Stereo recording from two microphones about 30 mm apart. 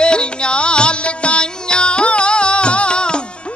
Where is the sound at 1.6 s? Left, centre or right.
Left.